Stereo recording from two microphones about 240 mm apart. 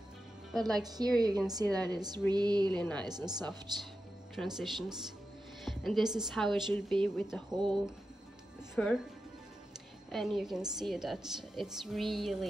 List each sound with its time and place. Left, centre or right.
0.5 s a woman's voice: centre
0.8 s speech: centre
2.7 s a woman's voice: centre
3.1 s speech: centre
4.4 s a woman's voice: centre
10.1 s a woman's voice: centre